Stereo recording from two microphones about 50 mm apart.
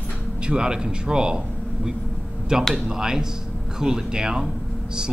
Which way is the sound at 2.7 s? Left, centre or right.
Centre.